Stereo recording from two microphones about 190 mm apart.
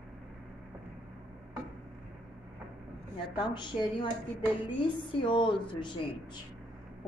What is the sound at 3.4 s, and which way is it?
A woman's voice, 25° left (ahead or behind).